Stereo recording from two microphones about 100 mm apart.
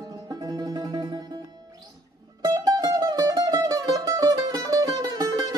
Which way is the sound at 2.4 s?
40° right (ahead or behind).